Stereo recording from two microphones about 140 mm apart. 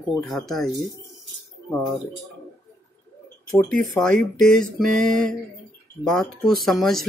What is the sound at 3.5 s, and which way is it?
Speech, 5° left (ahead or behind).